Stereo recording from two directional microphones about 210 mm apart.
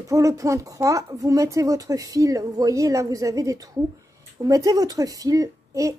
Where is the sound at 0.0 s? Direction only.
15° right (ahead or behind).